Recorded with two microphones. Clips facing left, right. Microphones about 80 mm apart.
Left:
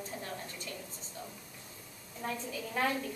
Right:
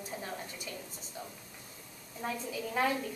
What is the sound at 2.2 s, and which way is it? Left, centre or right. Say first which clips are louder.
Speech: right 1 dB; centre.